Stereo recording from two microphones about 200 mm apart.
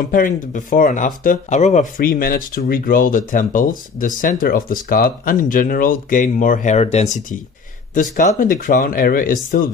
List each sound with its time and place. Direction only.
0.0 s speech: 40° left (ahead or behind)